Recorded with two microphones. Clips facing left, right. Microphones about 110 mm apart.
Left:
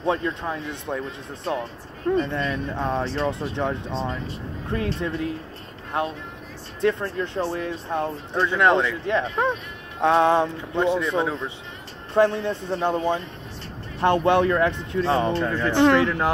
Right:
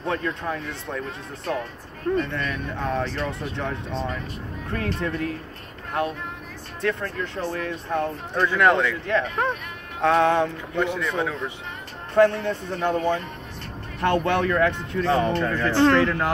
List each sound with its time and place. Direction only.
0.0 s speech: 25° left (ahead or behind)